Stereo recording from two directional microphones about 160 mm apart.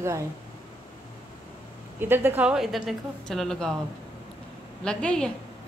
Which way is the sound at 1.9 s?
15° right (ahead or behind).